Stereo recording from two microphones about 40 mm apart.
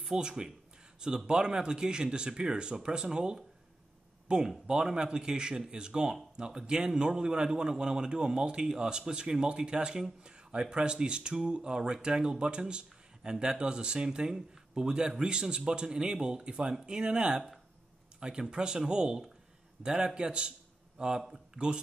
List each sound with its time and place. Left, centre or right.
0.0 s a man's voice: right